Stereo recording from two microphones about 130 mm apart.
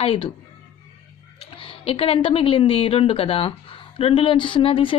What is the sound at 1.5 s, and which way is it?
A woman's voice, 45° left (ahead or behind).